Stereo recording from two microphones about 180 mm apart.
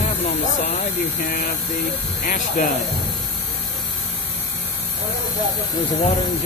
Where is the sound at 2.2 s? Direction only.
50° left (ahead or behind).